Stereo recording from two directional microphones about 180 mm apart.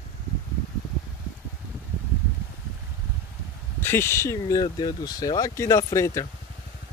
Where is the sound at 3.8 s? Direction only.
15° left (ahead or behind).